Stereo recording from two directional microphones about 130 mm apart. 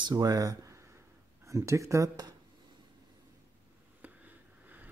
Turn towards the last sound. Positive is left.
turn(degrees=-10)  # may be behind; listen again after turning